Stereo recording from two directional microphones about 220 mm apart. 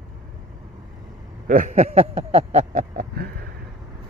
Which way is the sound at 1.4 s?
35° right (ahead or behind).